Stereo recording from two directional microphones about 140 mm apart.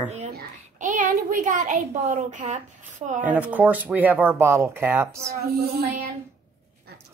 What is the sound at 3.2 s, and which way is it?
Speech, 10° right (ahead or behind).